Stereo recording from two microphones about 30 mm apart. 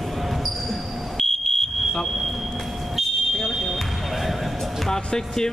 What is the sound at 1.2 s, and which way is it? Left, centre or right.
Smoke detector, centre.